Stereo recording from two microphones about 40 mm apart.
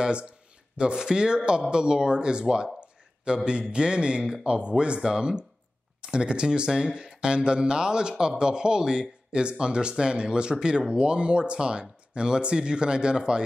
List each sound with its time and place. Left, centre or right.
0.0 s speech: right